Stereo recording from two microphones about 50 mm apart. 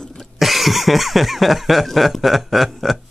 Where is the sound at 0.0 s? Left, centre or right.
Centre.